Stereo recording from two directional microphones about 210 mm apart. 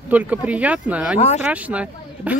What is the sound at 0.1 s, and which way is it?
Speech, 5° right (ahead or behind).